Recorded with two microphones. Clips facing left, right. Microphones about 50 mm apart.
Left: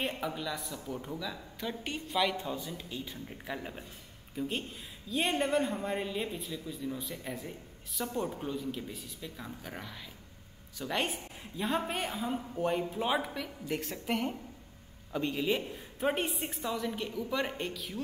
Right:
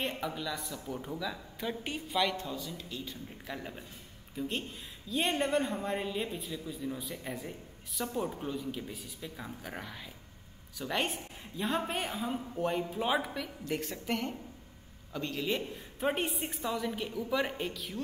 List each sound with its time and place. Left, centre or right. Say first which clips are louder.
0.1 s speech: even; centre
2.3 s a man's voice: left 1 dB; left; by 18.0 s centre